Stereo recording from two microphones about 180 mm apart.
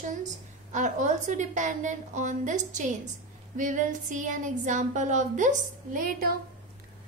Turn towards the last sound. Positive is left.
turn(degrees=-50)  # may be behind; listen again after turning